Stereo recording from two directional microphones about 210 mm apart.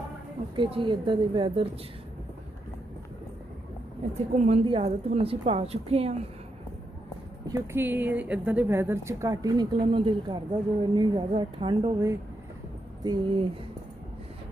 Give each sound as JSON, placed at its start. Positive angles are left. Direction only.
{"t": 0.6, "sound": "a woman's voice", "side_deg": -25}
{"t": 4.1, "sound": "a woman's voice", "side_deg": -35}
{"t": 7.4, "sound": "a woman's voice", "side_deg": -15}